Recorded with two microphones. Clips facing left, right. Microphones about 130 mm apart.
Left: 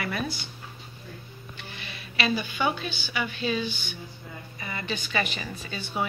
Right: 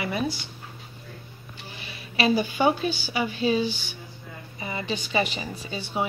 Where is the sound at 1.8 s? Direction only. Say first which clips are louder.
Right 5 dB; 35° right (ahead or behind).